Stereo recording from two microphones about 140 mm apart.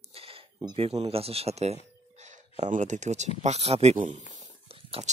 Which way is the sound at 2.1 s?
55° right (ahead or behind).